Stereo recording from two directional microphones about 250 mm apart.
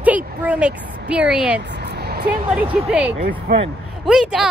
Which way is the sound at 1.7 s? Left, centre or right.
Right.